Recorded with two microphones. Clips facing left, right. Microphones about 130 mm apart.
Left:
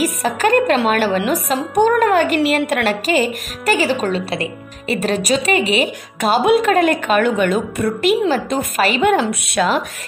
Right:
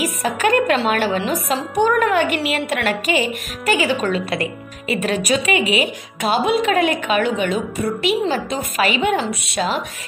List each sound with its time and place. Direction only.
0.0 s a woman's voice: 40° left (ahead or behind)
6.7 s speech: 40° left (ahead or behind)
9.2 s speech: 55° left (ahead or behind)